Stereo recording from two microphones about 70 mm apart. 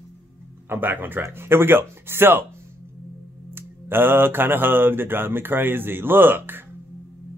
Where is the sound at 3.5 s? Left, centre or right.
Right.